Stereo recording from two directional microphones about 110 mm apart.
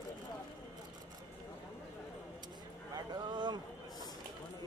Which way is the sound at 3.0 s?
40° right (ahead or behind).